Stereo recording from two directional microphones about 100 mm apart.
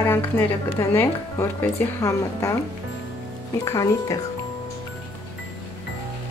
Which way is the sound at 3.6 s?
35° left (ahead or behind).